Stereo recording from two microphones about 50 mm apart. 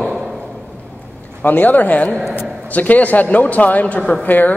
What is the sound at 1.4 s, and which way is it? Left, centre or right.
Speech, left.